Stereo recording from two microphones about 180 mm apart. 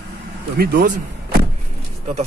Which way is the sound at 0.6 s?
55° right (ahead or behind).